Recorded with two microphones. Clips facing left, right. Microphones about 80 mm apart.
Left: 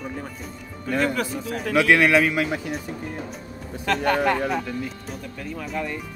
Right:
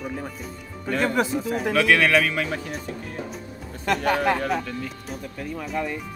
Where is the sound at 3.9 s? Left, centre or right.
Centre.